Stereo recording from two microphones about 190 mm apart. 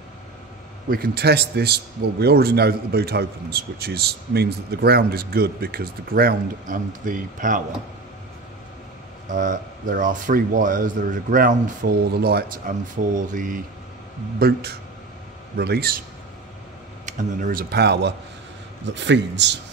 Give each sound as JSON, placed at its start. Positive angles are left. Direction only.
{"t": 0.8, "sound": "a man's voice", "side_deg": -55}
{"t": 9.3, "sound": "speech", "side_deg": -45}
{"t": 14.4, "sound": "a man's voice", "side_deg": -55}
{"t": 17.0, "sound": "a man's voice", "side_deg": -45}